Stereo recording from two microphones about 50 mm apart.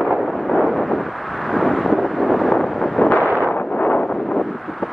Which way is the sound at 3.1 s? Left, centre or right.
Left.